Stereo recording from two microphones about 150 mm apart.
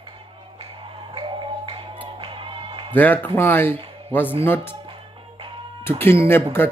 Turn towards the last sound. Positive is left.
turn(degrees=15)  # may be behind; listen again after turning